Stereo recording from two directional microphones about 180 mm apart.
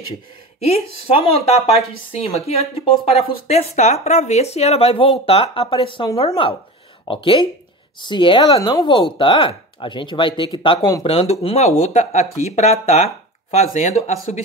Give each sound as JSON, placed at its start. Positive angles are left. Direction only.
{"t": 0.7, "sound": "speech", "side_deg": 30}